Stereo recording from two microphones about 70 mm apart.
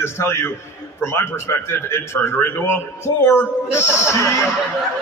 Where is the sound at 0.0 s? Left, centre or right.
Left.